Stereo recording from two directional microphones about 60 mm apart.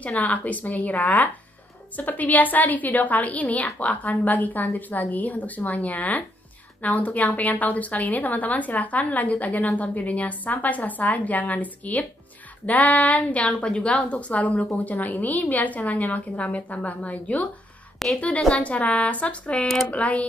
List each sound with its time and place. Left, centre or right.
0.0 s a woman's voice: left
17.9 s a sound: centre
18.5 s a woman's voice: left